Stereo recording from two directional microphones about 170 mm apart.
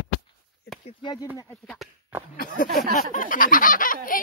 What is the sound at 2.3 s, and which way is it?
Speech, 55° left (ahead or behind).